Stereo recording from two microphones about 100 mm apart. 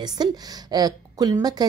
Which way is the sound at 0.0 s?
40° right (ahead or behind).